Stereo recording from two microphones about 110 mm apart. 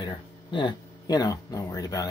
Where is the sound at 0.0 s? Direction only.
45° left (ahead or behind).